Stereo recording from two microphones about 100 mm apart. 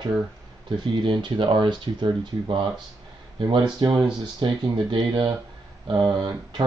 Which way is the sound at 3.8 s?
45° right (ahead or behind).